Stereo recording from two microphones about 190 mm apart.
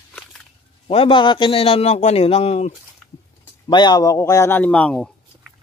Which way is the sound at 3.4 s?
20° left (ahead or behind).